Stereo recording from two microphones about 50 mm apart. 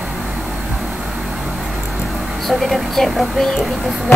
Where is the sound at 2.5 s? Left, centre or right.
Centre.